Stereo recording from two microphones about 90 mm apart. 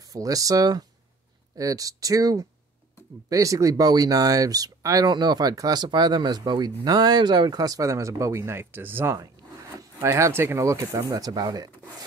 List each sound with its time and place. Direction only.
0.0 s speech: 40° right (ahead or behind)